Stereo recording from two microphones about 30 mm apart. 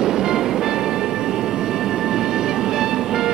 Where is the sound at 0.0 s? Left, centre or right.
Centre.